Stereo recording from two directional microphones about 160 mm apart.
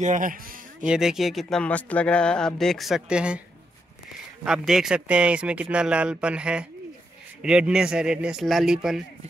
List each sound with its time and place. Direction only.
0.0 s speech: 55° right (ahead or behind)
0.8 s speech: 5° right (ahead or behind)
4.5 s speech: 5° right (ahead or behind)